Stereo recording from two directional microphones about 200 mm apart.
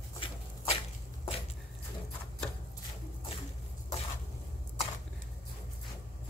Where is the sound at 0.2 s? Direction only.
25° left (ahead or behind).